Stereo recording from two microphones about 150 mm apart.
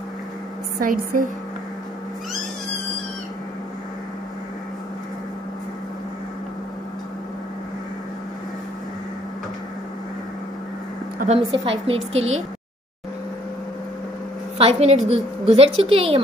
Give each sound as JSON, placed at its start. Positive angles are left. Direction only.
{"t": 0.7, "sound": "a woman's voice", "side_deg": -70}
{"t": 11.3, "sound": "a woman's voice", "side_deg": -40}
{"t": 14.6, "sound": "a woman's voice", "side_deg": -45}